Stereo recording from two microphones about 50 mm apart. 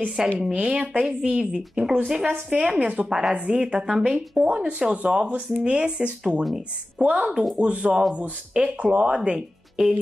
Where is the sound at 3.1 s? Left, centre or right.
Centre.